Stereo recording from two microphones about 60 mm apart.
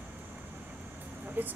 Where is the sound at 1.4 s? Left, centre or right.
Right.